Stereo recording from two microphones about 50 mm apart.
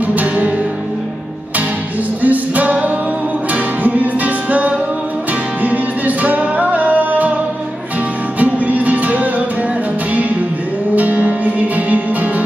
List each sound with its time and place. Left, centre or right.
0.1 s music: right
2.2 s music: right
8.4 s music: right
11.0 s music: right